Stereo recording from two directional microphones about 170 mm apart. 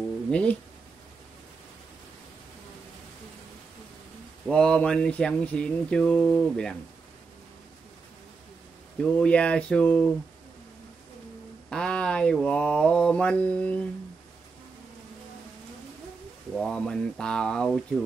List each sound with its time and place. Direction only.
0.3 s speech: 5° left (ahead or behind)
4.5 s speech: 5° left (ahead or behind)
9.0 s speech: 5° left (ahead or behind)
11.7 s speech: 5° left (ahead or behind)
16.5 s speech: centre (ahead or behind)